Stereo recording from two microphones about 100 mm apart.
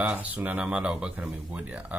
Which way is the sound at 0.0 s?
15° right (ahead or behind).